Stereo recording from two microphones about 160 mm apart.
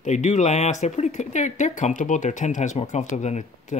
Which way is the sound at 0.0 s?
50° left (ahead or behind).